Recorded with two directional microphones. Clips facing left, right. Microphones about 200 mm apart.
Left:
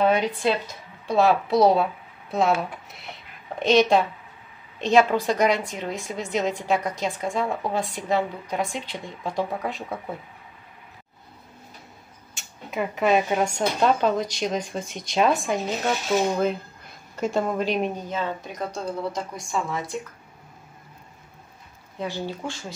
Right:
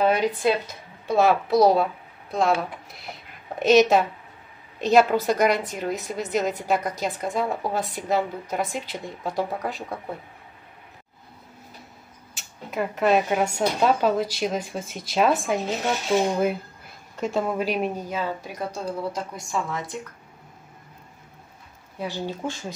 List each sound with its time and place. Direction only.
0.0 s speech: 5° right (ahead or behind)
12.4 s a woman's voice: centre (ahead or behind)
22.4 s speech: 20° right (ahead or behind)